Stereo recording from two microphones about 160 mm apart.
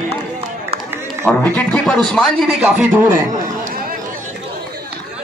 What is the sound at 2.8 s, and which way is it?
Speech, 15° right (ahead or behind).